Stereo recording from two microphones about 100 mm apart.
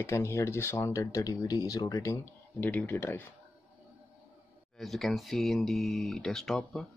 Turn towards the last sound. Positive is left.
turn(degrees=0)  # may be behind; listen again after turning